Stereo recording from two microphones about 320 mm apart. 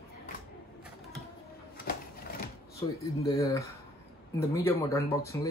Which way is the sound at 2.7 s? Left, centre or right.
Centre.